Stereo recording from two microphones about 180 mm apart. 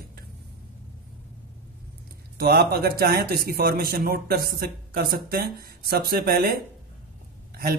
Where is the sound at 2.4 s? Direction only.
60° right (ahead or behind).